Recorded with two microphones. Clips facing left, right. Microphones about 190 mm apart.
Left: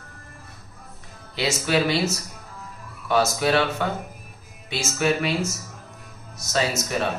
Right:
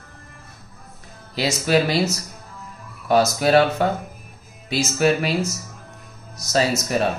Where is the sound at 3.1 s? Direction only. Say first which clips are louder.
Right 4 dB; 40° right (ahead or behind).